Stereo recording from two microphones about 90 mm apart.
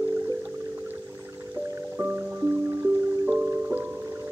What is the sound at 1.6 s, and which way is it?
Music, 25° right (ahead or behind).